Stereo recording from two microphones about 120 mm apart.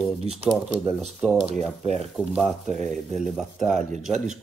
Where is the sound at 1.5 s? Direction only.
65° right (ahead or behind).